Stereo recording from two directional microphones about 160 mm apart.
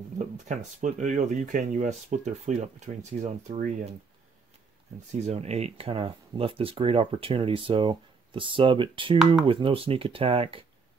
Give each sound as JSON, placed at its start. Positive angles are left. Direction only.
{"t": 0.2, "sound": "speech", "side_deg": -50}
{"t": 5.1, "sound": "speech", "side_deg": -40}